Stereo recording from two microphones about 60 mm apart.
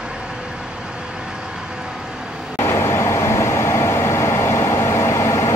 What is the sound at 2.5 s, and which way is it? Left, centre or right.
Vehicle, left.